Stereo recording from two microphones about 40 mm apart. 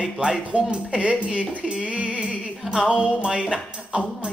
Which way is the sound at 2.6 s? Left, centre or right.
Centre.